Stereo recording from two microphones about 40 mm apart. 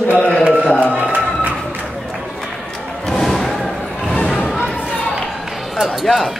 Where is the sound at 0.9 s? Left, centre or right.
Right.